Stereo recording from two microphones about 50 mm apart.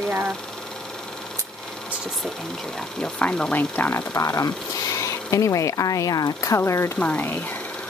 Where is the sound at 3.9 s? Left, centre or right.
Left.